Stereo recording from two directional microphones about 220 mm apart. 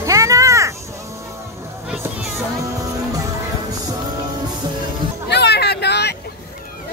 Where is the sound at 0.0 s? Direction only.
15° right (ahead or behind).